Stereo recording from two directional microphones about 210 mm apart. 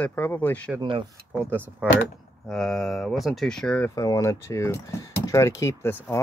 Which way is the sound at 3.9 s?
15° left (ahead or behind).